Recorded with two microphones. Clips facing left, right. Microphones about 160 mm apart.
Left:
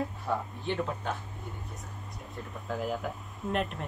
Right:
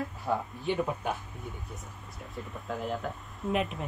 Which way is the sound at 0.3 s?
10° right (ahead or behind).